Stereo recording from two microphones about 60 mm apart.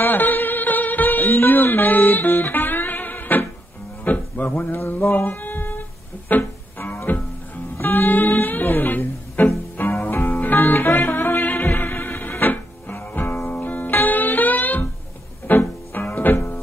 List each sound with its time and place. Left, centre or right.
0.0 s music: left